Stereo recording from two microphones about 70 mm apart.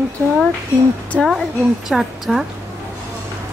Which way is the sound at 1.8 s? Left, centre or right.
Centre.